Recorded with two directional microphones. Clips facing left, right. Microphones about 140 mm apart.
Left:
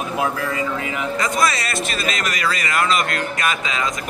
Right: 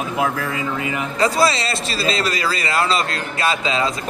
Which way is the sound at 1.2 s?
30° right (ahead or behind).